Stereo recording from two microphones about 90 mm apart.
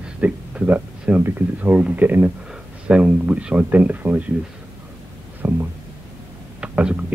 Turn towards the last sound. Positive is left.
turn(degrees=-15)  # may be behind; listen again after turning